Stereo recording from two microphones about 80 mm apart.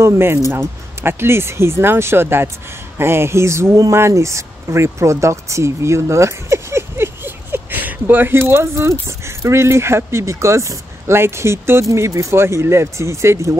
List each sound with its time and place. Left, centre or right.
0.0 s speech: right